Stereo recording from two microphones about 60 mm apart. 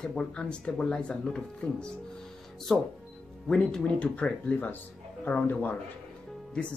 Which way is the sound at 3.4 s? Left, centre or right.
Centre.